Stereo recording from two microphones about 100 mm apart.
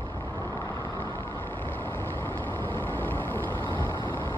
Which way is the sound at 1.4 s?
20° left (ahead or behind).